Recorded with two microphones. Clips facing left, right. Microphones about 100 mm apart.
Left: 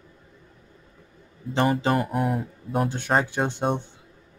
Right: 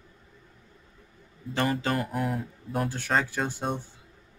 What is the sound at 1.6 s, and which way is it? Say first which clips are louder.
Speech: left 5 dB; 20° left (ahead or behind).